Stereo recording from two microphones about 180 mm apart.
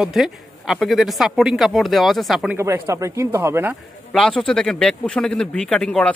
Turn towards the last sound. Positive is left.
turn(degrees=5)  # may be behind; listen again after turning